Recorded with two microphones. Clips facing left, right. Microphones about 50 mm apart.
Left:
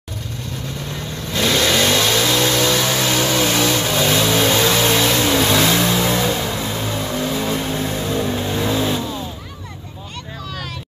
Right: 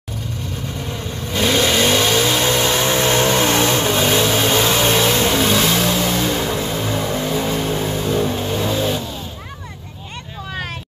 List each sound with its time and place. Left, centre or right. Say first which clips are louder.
1.3 s vehicle: right 1 dB; centre
5.9 s vehicle: left 1 dB; centre
6.3 s a sound: right 2 dB; centre
6.8 s vehicle: right 1 dB; centre